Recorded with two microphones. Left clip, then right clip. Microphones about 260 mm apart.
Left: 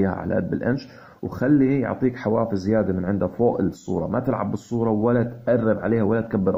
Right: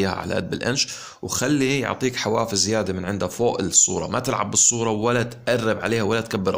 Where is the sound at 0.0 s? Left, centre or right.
Right.